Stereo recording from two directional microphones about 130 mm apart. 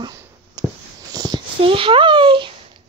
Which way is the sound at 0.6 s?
30° right (ahead or behind).